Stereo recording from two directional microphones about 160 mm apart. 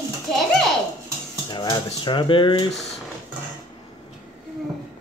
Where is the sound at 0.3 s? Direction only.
Centre (ahead or behind).